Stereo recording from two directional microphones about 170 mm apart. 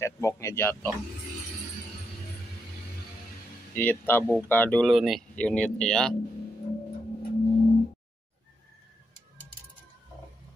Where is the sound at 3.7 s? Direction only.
10° left (ahead or behind).